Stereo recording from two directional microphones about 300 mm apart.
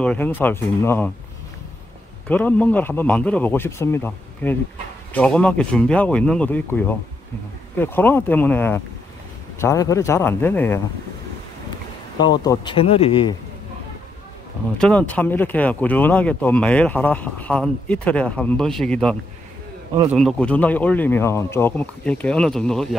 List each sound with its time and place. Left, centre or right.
0.0 s a man's voice: centre
2.2 s a man's voice: centre
12.2 s a man's voice: centre
14.8 s speech: centre